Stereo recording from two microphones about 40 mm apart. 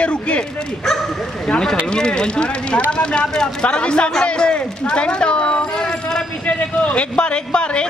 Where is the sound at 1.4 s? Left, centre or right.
Left.